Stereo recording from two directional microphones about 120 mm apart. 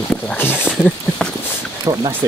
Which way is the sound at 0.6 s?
5° left (ahead or behind).